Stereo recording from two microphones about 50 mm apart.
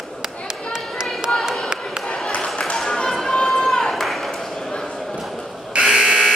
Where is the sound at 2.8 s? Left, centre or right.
Centre.